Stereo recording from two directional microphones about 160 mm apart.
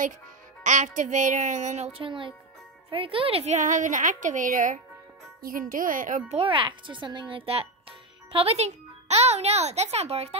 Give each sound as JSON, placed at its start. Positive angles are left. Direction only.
{"t": 0.7, "sound": "a woman's voice", "side_deg": -50}
{"t": 6.3, "sound": "a child's voice", "side_deg": -35}